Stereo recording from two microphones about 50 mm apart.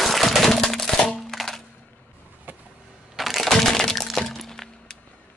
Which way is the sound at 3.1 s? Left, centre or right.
Centre.